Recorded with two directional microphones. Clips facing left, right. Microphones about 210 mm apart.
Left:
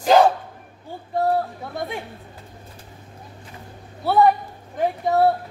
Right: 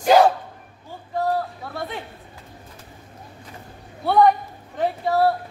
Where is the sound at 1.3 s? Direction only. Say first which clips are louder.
Left 2 dB; 20° left (ahead or behind).